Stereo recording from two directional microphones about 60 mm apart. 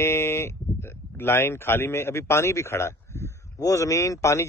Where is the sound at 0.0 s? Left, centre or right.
Left.